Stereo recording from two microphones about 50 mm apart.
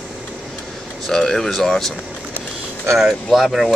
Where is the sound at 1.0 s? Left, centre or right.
Centre.